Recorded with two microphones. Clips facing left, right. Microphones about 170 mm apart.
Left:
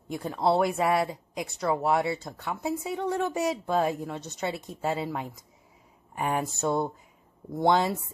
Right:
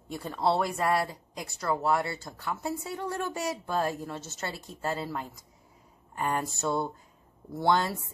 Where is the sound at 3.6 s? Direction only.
Centre (ahead or behind).